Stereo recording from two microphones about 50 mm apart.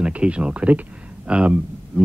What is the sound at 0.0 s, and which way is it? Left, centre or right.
Speech, right.